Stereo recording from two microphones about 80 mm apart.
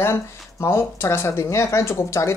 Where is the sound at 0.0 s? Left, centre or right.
Left.